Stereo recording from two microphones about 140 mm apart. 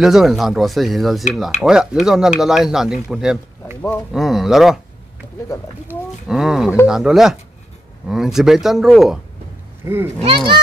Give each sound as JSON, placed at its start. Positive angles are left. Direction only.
{"t": 0.0, "sound": "speech", "side_deg": -5}
{"t": 5.9, "sound": "speech", "side_deg": -5}
{"t": 9.8, "sound": "speech", "side_deg": -25}
{"t": 10.2, "sound": "speech", "side_deg": -35}